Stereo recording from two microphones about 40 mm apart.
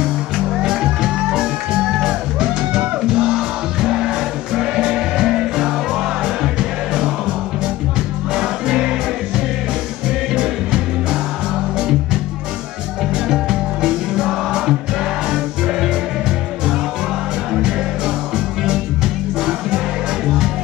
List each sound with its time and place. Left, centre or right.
0.6 s music: centre
8.4 s music: centre
10.3 s music: centre
13.1 s music: centre
17.6 s music: centre